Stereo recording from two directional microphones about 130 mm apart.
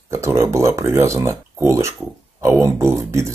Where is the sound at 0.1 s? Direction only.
20° right (ahead or behind).